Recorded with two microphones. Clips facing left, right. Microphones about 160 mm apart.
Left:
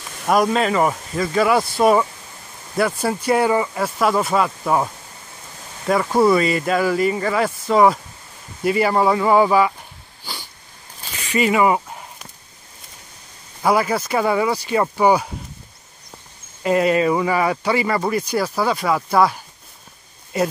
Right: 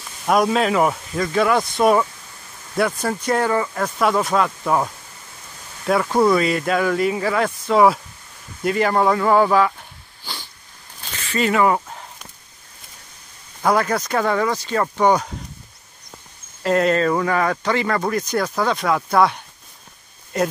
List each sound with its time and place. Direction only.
0.3 s speech: centre (ahead or behind)
11.1 s a sound: 10° left (ahead or behind)
13.6 s speech: 5° left (ahead or behind)
16.6 s speech: 5° left (ahead or behind)